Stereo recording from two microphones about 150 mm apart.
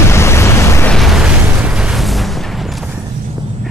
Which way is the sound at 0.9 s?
Centre (ahead or behind).